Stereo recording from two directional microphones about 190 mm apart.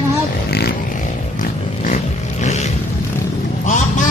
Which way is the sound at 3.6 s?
40° left (ahead or behind).